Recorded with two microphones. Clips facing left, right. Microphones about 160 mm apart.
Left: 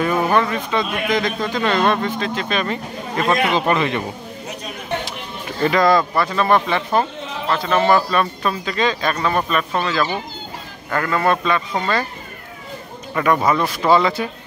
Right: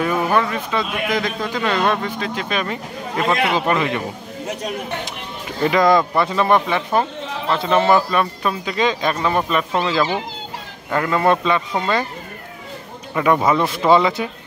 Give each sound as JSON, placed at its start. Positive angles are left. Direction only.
{"t": 0.0, "sound": "speech", "side_deg": -5}
{"t": 5.6, "sound": "speech", "side_deg": -15}
{"t": 7.5, "sound": "speech", "side_deg": -20}
{"t": 13.1, "sound": "speech", "side_deg": -10}
{"t": 13.6, "sound": "speech", "side_deg": -25}